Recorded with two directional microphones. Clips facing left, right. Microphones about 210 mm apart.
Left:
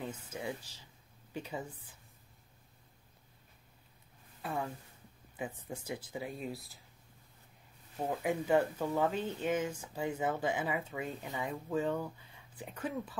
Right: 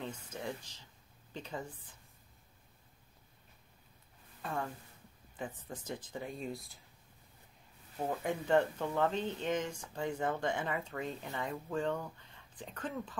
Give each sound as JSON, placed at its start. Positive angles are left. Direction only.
{"t": 0.0, "sound": "speech", "side_deg": 10}
{"t": 4.4, "sound": "a woman's voice", "side_deg": 5}
{"t": 8.0, "sound": "speech", "side_deg": 5}